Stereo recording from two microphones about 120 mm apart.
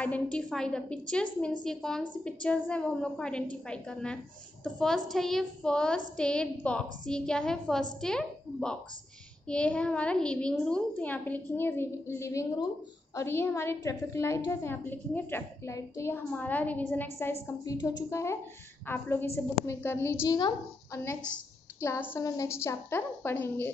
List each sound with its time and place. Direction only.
0.0 s a woman's voice: 10° left (ahead or behind)
16.3 s a woman's voice: 15° left (ahead or behind)
17.7 s a woman's voice: 30° left (ahead or behind)
20.2 s speech: 30° left (ahead or behind)
21.8 s a woman's voice: 20° left (ahead or behind)